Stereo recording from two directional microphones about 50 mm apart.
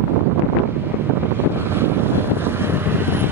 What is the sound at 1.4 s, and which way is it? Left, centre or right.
Vehicle, right.